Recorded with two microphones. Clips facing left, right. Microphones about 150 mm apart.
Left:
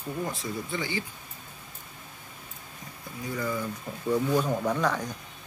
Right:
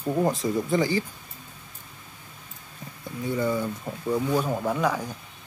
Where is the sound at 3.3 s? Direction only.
25° right (ahead or behind).